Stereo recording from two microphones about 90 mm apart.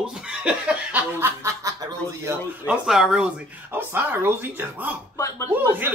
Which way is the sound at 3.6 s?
25° right (ahead or behind).